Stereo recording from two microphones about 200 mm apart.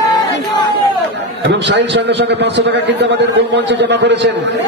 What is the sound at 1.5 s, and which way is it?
A man's voice, 65° right (ahead or behind).